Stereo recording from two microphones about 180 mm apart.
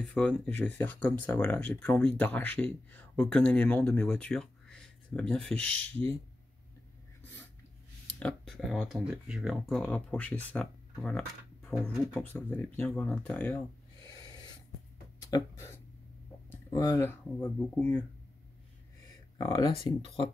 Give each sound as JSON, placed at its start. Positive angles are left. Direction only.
{"t": 0.0, "sound": "speech", "side_deg": 5}
{"t": 4.7, "sound": "a sound", "side_deg": 5}
{"t": 8.2, "sound": "speech", "side_deg": 5}
{"t": 15.2, "sound": "speech", "side_deg": 15}
{"t": 19.3, "sound": "speech", "side_deg": 25}